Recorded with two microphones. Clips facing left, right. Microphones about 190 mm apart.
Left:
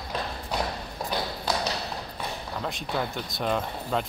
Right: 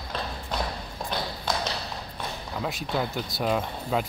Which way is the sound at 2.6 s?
Centre (ahead or behind).